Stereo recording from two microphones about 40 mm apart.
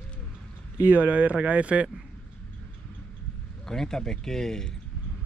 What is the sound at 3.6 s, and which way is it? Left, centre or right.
Speech, centre.